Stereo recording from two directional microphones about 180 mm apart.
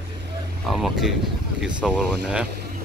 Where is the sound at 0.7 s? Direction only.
Centre (ahead or behind).